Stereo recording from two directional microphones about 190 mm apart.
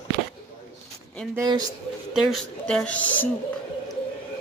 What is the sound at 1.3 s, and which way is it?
Speech, 20° right (ahead or behind).